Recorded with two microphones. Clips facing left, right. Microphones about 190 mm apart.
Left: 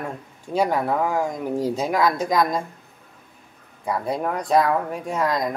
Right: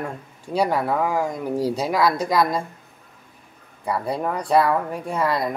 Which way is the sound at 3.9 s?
5° right (ahead or behind).